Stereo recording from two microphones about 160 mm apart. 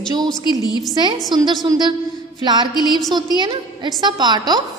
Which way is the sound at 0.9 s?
30° right (ahead or behind).